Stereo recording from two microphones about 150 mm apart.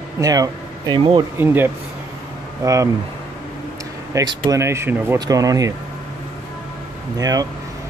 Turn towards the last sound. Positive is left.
turn(degrees=-25)  # may be behind; listen again after turning